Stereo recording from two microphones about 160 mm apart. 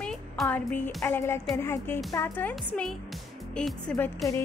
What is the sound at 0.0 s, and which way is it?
Music, 5° left (ahead or behind).